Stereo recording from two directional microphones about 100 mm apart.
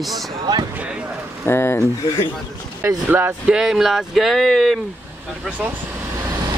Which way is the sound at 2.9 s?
20° right (ahead or behind).